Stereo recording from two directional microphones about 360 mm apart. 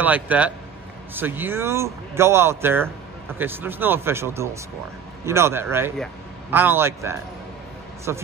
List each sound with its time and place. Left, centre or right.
0.0 s speech: centre